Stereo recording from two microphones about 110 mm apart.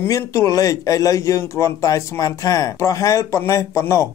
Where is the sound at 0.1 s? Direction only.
30° left (ahead or behind).